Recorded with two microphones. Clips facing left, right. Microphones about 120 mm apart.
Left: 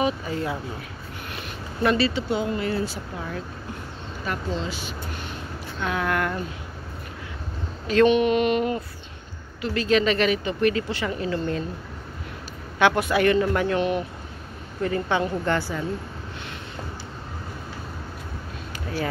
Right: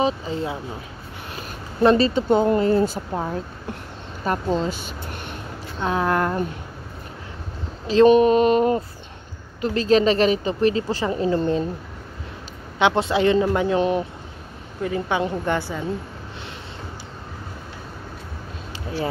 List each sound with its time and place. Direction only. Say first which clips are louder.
0.0 s a man's voice: right 2 dB; 25° right (ahead or behind); by 3.3 s 45° right (ahead or behind)
4.3 s speech: right 7 dB; 45° right (ahead or behind)
5.8 s a woman's voice: right 4 dB; 30° right (ahead or behind)
7.8 s a sound: right 5 dB; 30° right (ahead or behind)
9.6 s a woman's voice: right 4 dB; 35° right (ahead or behind)
12.7 s a man's voice: right 1 dB; 25° right (ahead or behind)
14.8 s a woman's voice: right 1 dB; 10° right (ahead or behind)